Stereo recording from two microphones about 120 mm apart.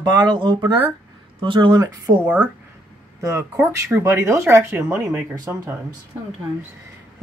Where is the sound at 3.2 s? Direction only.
25° right (ahead or behind).